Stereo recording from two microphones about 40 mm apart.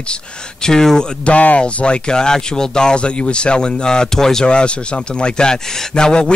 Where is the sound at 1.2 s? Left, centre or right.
Left; by 4.4 s centre.